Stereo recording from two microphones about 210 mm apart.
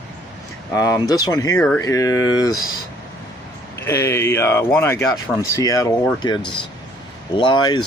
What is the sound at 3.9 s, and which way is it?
Speech, 15° left (ahead or behind).